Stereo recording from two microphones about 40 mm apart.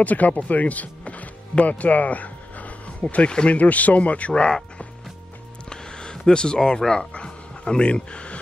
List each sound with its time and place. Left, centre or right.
0.0 s speech: left
1.5 s music: left
3.3 s speech: left
3.5 s speech: left
5.7 s a sound: left
6.9 s speech: centre